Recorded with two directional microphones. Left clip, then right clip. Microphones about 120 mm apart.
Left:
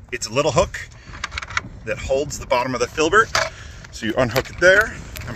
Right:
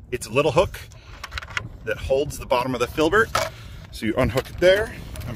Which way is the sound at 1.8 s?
30° right (ahead or behind).